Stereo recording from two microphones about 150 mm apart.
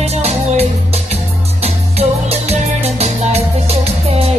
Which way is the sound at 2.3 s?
45° right (ahead or behind).